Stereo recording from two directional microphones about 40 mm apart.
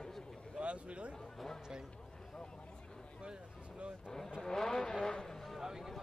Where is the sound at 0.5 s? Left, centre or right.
Right.